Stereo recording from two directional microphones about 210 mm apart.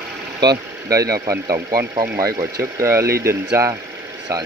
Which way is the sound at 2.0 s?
45° right (ahead or behind).